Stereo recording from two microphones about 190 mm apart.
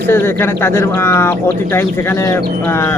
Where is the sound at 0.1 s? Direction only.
10° left (ahead or behind).